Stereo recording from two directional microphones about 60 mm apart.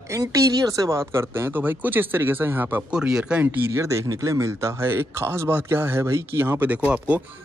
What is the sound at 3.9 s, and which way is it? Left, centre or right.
Speech, right.